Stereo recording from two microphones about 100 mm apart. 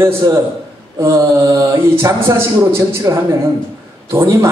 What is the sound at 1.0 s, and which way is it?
Mantra, 35° right (ahead or behind).